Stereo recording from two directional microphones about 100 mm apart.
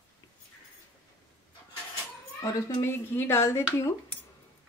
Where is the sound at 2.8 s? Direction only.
25° left (ahead or behind).